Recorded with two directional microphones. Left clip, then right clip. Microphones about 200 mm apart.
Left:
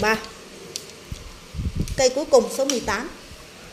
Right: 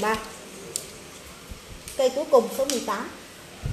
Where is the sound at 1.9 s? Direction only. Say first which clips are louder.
Left 2 dB; 40° left (ahead or behind).